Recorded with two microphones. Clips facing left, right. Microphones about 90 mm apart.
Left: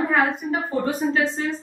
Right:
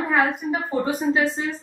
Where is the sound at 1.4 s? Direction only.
20° right (ahead or behind).